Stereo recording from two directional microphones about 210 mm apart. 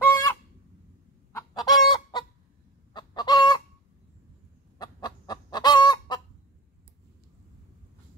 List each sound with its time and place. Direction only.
0.0 s fowl: 10° left (ahead or behind)
1.5 s chicken: 20° left (ahead or behind)
4.7 s chicken: 20° left (ahead or behind)